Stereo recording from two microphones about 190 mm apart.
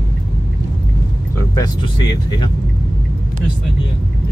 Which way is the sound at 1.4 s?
20° left (ahead or behind).